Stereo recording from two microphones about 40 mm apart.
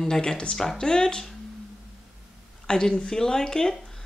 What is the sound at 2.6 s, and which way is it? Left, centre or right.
Speech, centre.